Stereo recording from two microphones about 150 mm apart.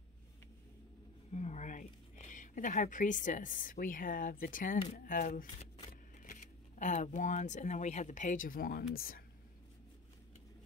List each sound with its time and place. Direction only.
1.3 s speech: 50° left (ahead or behind); by 5.5 s 70° left (ahead or behind)
5.9 s speech: 60° left (ahead or behind); by 9.2 s 80° left